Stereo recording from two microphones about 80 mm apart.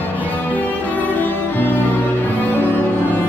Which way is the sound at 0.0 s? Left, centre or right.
Left.